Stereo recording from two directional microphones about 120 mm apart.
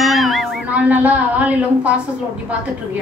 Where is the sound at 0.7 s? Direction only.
10° right (ahead or behind).